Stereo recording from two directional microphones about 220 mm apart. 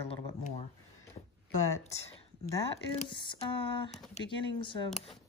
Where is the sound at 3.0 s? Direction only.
20° left (ahead or behind).